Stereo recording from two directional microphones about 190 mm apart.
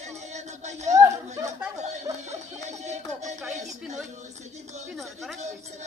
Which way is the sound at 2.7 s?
35° right (ahead or behind).